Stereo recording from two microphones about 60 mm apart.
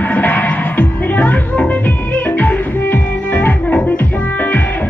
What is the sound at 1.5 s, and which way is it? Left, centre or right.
Music, centre.